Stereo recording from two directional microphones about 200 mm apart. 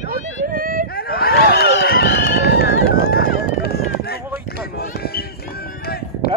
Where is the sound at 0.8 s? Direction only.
50° left (ahead or behind).